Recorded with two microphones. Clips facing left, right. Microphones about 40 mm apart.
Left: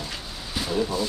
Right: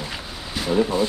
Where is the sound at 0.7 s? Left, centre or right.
Right.